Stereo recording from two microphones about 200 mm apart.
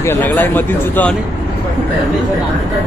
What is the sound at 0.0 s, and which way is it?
Speech, 10° left (ahead or behind).